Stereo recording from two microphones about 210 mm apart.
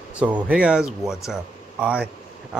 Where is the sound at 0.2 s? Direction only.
5° right (ahead or behind).